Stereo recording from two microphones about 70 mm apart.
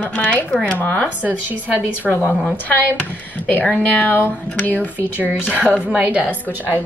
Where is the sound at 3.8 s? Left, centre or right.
Left.